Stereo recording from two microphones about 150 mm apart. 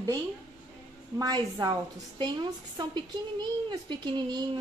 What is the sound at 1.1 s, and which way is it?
A woman's voice, 25° right (ahead or behind).